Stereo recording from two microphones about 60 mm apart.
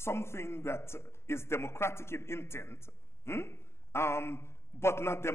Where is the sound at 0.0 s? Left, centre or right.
Left.